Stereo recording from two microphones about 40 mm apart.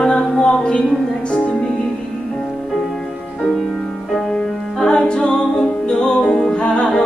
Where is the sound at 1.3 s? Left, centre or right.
Left.